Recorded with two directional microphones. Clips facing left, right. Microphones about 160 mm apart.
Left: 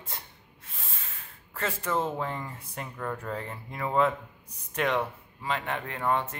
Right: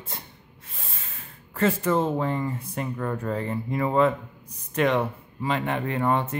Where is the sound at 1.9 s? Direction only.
20° right (ahead or behind).